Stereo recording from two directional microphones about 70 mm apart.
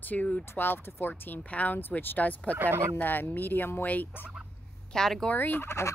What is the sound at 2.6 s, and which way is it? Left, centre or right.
Speech, right.